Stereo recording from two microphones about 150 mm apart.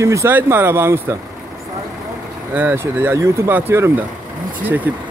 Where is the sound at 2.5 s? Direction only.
15° right (ahead or behind).